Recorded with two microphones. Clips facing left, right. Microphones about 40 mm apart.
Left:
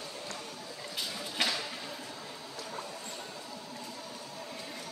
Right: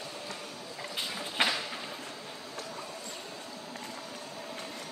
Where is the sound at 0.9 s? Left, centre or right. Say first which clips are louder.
Right 3 dB; right.